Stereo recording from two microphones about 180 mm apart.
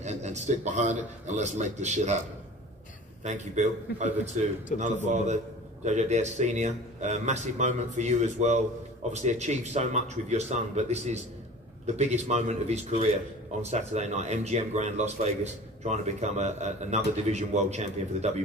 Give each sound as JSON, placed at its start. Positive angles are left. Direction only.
{"t": 0.0, "sound": "speech", "side_deg": -40}
{"t": 3.3, "sound": "speech", "side_deg": -40}